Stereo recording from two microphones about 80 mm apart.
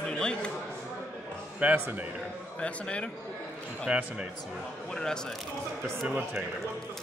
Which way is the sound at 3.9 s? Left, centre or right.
Centre.